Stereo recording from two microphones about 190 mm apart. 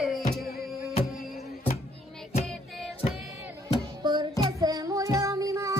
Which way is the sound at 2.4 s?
Centre (ahead or behind).